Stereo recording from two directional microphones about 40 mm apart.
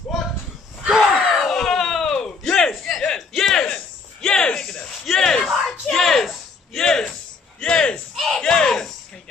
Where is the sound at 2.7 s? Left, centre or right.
Centre.